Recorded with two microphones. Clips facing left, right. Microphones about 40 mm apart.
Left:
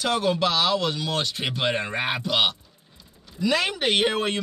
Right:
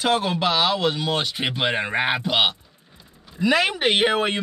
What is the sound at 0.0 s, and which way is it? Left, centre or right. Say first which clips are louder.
Speech: right 2 dB; right.